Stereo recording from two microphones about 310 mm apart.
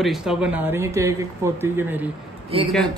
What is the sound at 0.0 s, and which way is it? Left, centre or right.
Speech, centre.